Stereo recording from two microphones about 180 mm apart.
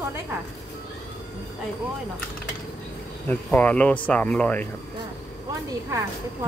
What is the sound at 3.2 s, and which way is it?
Speech, 10° left (ahead or behind).